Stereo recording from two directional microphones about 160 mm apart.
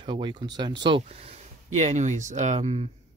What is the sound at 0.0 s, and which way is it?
Speech, 30° right (ahead or behind).